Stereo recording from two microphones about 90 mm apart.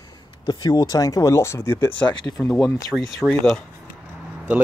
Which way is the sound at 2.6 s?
40° left (ahead or behind).